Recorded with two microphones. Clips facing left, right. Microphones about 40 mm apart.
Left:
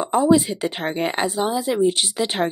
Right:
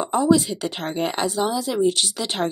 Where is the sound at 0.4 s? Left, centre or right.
Centre.